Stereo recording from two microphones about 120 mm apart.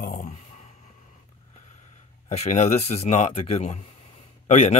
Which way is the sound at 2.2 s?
70° left (ahead or behind).